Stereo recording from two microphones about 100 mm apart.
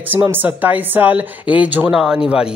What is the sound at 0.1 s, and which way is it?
Speech, 20° right (ahead or behind).